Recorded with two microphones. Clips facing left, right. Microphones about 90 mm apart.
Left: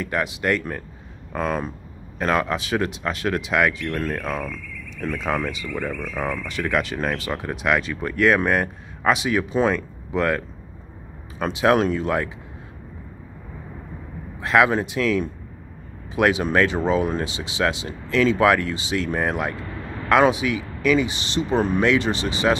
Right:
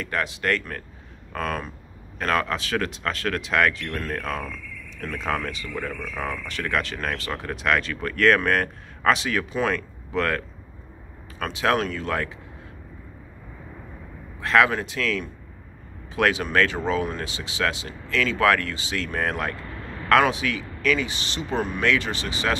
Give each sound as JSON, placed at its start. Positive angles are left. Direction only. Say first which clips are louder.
{"t": 0.0, "sound": "speech", "louder": "left 3 dB", "side_deg": 15}
{"t": 14.4, "sound": "speech", "louder": "left 2 dB", "side_deg": 15}